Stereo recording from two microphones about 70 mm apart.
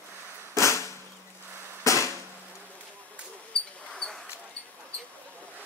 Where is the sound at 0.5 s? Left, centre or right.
Left.